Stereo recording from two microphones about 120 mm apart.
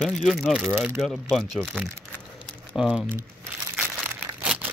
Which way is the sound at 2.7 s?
5° right (ahead or behind).